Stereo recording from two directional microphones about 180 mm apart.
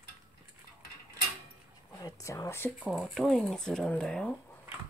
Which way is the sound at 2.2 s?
15° left (ahead or behind).